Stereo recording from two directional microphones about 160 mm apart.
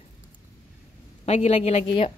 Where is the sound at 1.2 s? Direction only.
45° left (ahead or behind).